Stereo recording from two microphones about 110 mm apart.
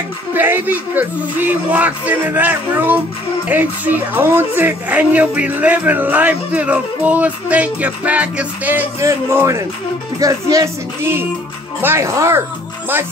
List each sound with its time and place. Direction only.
0.3 s a man's voice: 20° right (ahead or behind)
9.0 s speech: 25° right (ahead or behind)